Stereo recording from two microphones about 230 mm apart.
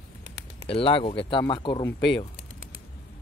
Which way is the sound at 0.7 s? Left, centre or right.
Left.